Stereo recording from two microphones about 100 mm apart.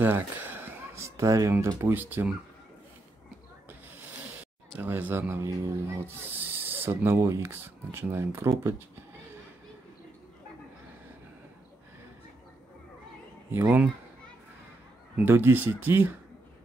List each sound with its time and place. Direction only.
0.0 s a sound: 20° right (ahead or behind)
1.8 s speech: 20° right (ahead or behind)
3.6 s snake: 15° right (ahead or behind)
4.7 s speech: 15° right (ahead or behind)
13.5 s speech: 20° right (ahead or behind)
15.1 s speech: 20° right (ahead or behind)